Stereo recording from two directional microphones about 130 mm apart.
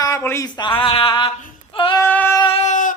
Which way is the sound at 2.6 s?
80° left.